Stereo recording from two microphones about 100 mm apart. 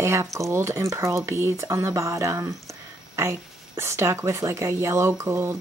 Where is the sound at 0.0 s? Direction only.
30° right (ahead or behind).